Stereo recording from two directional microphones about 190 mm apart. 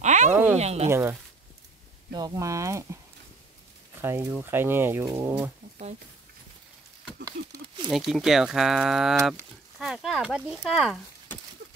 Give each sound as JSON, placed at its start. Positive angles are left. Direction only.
{"t": 0.0, "sound": "a sound", "side_deg": -40}
{"t": 0.6, "sound": "speech", "side_deg": -35}
{"t": 0.8, "sound": "speech", "side_deg": -10}
{"t": 2.1, "sound": "speech", "side_deg": -20}
{"t": 4.0, "sound": "speech", "side_deg": -15}
{"t": 7.4, "sound": "a sound", "side_deg": -75}
{"t": 7.9, "sound": "speech", "side_deg": 0}